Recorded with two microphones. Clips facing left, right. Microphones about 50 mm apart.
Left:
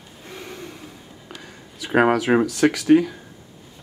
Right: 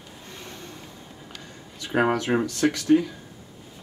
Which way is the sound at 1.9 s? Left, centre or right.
Left.